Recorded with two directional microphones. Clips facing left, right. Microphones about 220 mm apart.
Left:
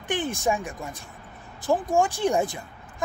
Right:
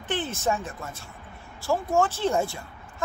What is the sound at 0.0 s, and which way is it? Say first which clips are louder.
A woman's voice: left 2 dB; 15° left (ahead or behind).